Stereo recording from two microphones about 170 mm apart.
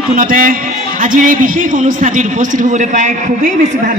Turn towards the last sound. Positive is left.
turn(degrees=-45)  # may be behind; listen again after turning